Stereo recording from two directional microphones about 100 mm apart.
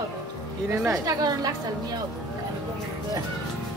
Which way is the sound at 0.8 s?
40° right (ahead or behind).